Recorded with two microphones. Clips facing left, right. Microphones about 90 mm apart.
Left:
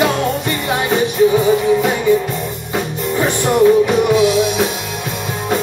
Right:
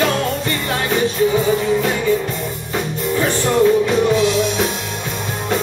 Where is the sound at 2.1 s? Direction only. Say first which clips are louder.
Left 4 dB; 15° left (ahead or behind).